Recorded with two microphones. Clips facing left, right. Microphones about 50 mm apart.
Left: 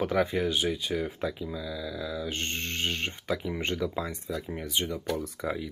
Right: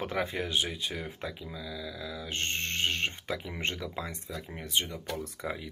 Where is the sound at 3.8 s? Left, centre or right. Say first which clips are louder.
Left 6 dB; centre.